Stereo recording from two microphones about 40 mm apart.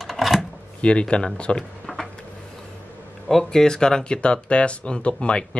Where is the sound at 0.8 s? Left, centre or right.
Left.